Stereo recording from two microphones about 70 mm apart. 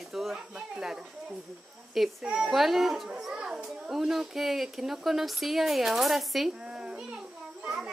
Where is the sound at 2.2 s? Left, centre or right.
Centre.